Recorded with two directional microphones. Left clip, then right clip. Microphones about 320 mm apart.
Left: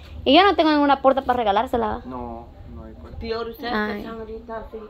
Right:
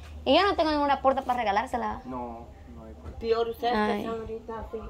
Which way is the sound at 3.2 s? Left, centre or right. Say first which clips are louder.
Right 2 dB; centre.